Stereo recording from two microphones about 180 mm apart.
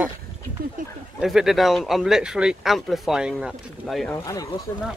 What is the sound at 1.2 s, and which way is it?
Speech, centre (ahead or behind).